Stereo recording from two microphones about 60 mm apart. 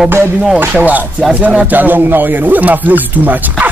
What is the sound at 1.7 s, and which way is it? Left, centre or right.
Speech, right.